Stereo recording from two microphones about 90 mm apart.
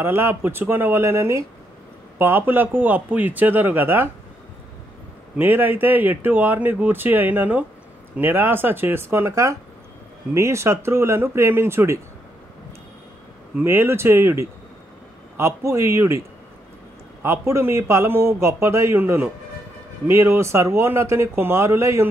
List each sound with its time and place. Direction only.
0.0 s speech: 25° right (ahead or behind)
5.4 s speech: 25° right (ahead or behind)
13.6 s speech: 25° right (ahead or behind)
17.2 s speech: 30° right (ahead or behind)